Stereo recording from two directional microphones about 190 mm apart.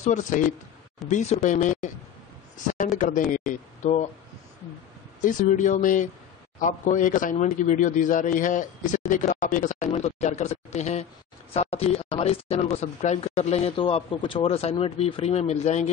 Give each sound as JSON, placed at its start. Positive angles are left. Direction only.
{"t": 0.0, "sound": "speech", "side_deg": 40}
{"t": 5.2, "sound": "speech", "side_deg": 40}